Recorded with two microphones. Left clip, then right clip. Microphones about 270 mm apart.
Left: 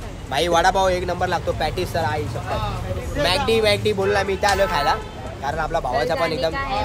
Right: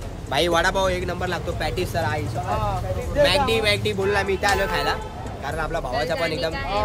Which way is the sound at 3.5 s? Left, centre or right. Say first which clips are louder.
Left 3 dB; centre.